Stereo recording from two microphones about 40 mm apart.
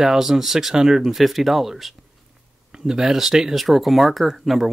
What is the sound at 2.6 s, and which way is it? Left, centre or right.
Speech, centre.